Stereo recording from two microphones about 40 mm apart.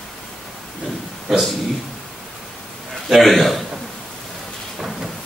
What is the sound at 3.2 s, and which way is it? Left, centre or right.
Speech, centre.